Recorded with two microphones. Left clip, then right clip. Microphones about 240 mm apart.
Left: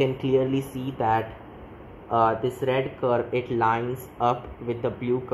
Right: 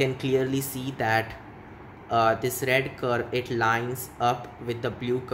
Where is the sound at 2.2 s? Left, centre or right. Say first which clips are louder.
Even; right.